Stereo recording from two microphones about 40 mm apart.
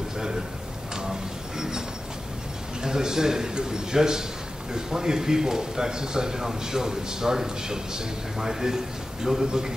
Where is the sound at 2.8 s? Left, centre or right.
Centre.